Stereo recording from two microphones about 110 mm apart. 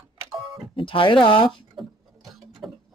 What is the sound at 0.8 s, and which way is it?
Speech, 50° left (ahead or behind).